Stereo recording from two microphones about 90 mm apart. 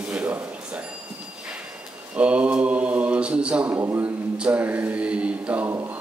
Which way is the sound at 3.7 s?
30° right (ahead or behind).